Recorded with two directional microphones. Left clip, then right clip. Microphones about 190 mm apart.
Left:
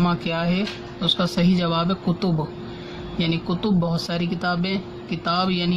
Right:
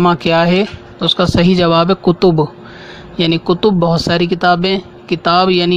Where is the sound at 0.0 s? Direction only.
50° right (ahead or behind).